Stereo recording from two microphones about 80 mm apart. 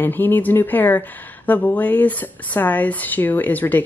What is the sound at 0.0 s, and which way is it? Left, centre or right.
Speech, left.